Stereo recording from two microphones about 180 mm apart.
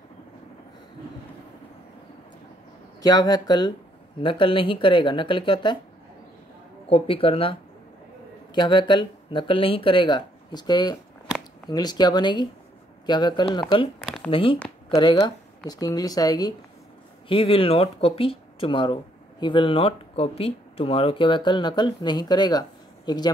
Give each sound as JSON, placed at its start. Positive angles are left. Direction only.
{"t": 3.0, "sound": "speech", "side_deg": 20}
{"t": 6.9, "sound": "speech", "side_deg": 30}
{"t": 8.5, "sound": "speech", "side_deg": 25}
{"t": 14.0, "sound": "speech", "side_deg": 0}
{"t": 14.3, "sound": "speech", "side_deg": 30}
{"t": 17.3, "sound": "speech", "side_deg": 30}